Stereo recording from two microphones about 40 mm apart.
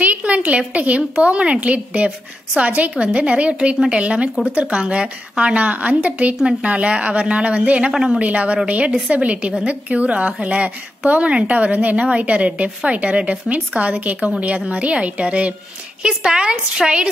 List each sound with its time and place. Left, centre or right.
0.0 s a woman's voice: right
16.0 s a woman's voice: right